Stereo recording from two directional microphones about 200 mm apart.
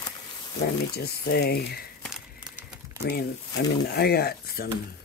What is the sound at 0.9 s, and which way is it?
Speech, 50° left (ahead or behind).